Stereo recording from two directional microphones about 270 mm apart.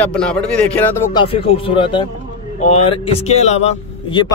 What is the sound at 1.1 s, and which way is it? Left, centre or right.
Speech, centre.